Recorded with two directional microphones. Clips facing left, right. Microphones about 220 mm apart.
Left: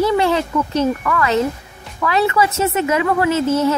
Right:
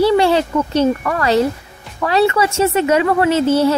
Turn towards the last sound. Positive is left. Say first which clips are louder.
# right 3 dB
turn(degrees=-30)  # may be behind; listen again after turning